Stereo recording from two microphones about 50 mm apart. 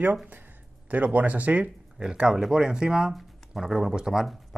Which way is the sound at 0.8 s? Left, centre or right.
Right.